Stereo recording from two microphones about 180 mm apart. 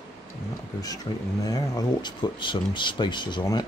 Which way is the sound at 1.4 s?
20° left (ahead or behind).